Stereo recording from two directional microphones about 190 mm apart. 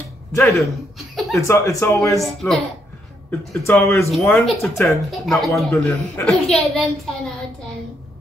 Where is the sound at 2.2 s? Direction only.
Centre (ahead or behind).